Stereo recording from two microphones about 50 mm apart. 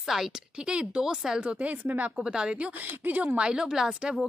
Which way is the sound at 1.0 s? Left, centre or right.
Centre.